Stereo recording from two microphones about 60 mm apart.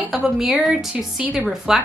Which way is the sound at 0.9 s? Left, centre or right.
Right.